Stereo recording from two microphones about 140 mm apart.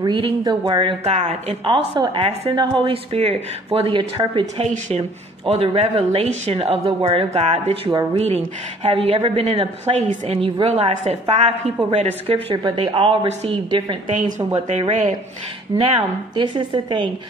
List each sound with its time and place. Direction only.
0.0 s a woman's voice: 30° right (ahead or behind)
1.0 s a woman's voice: 50° right (ahead or behind)
1.6 s a woman's voice: 35° right (ahead or behind)
3.7 s a woman's voice: 35° right (ahead or behind)
4.6 s a woman's voice: 55° right (ahead or behind); by 14.5 s 30° right (ahead or behind)
14.8 s speech: 60° right (ahead or behind)
15.9 s a woman's voice: 35° right (ahead or behind)